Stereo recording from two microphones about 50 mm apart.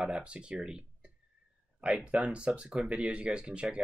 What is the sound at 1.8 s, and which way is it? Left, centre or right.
Speech, right.